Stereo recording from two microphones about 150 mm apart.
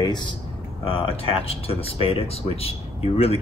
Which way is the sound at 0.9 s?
40° left (ahead or behind).